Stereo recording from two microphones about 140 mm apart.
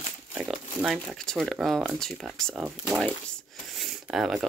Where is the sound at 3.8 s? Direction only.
5° right (ahead or behind).